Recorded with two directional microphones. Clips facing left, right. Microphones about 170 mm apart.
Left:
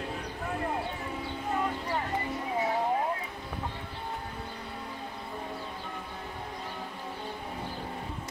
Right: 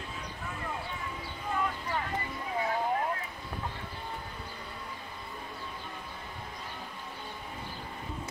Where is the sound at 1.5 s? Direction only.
35° left (ahead or behind).